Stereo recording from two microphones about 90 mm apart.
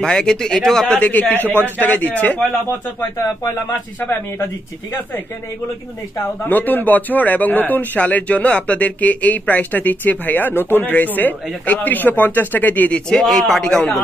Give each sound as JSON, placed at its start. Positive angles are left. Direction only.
{"t": 0.0, "sound": "speech", "side_deg": 5}
{"t": 0.9, "sound": "speech", "side_deg": 15}
{"t": 4.0, "sound": "speech", "side_deg": 20}
{"t": 6.5, "sound": "speech", "side_deg": 20}
{"t": 13.1, "sound": "a man's voice", "side_deg": 5}